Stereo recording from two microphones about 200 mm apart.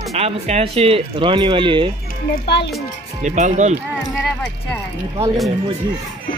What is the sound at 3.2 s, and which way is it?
Speech, 35° right (ahead or behind).